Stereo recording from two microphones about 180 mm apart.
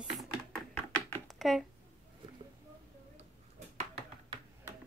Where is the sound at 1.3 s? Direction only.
Centre (ahead or behind).